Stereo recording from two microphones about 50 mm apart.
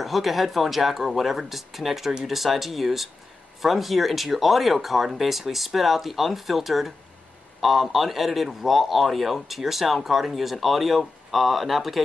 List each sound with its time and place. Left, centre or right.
0.0 s speech: centre